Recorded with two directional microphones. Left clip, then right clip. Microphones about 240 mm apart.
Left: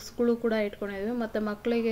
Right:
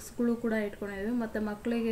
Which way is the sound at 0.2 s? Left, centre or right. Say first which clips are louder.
Left 5 dB; left.